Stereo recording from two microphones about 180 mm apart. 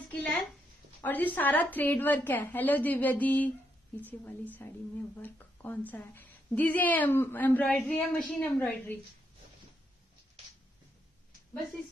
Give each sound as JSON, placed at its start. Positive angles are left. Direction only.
{"t": 0.1, "sound": "a woman's voice", "side_deg": 5}